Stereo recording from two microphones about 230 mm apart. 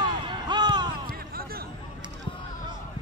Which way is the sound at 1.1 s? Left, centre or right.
Right.